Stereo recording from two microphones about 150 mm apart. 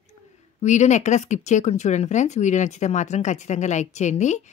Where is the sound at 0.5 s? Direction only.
50° left (ahead or behind).